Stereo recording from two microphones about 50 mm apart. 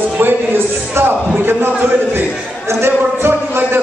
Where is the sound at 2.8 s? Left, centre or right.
Right.